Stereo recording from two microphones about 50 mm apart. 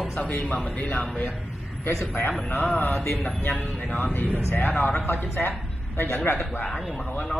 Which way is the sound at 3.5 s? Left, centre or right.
Centre.